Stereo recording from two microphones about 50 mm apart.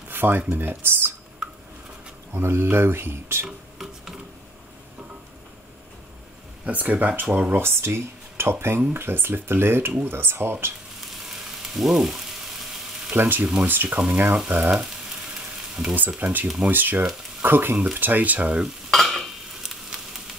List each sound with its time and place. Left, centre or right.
0.1 s a sound: right
0.4 s speech: right
2.3 s speech: right
3.4 s a sound: centre
6.6 s speech: right
7.5 s speech: right
11.2 s frying: centre
13.1 s speech: right
14.5 s frying: right
16.2 s speech: right
18.9 s stir: centre
19.6 s a sound: centre